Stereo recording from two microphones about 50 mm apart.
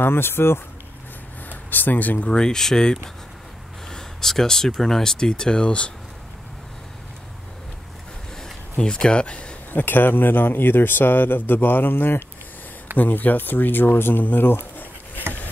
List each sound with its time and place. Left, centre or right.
0.0 s speech: left
1.5 s speech: left
2.2 s speech: centre
8.7 s speech: centre
9.7 s speech: left
12.9 s speech: left
14.2 s a sound: left